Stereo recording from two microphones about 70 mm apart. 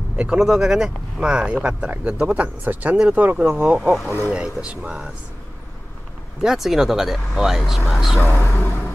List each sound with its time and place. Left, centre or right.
0.1 s a sound: centre
0.4 s speech: centre
6.4 s speech: centre
8.2 s speech: left